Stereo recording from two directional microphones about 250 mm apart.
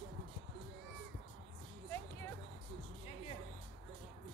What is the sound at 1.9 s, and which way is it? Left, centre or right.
Music, centre.